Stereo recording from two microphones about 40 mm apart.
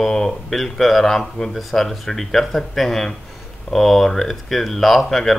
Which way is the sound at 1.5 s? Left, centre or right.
Centre.